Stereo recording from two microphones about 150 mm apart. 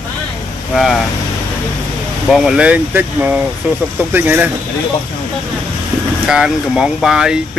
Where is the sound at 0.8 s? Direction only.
Centre (ahead or behind).